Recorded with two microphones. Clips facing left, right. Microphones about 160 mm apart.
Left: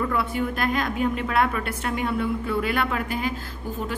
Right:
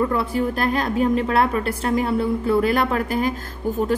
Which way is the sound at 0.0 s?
30° right (ahead or behind).